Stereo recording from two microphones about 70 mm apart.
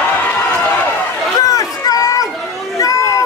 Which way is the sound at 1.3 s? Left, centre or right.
Left.